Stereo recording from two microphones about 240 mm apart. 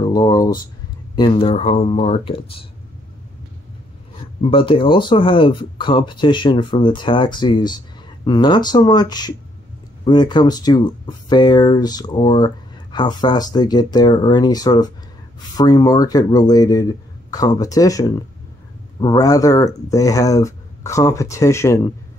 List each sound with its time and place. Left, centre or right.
0.0 s speech: centre
4.4 s speech: left